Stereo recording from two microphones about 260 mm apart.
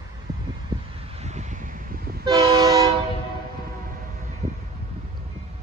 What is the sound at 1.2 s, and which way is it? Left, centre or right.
Toot, right.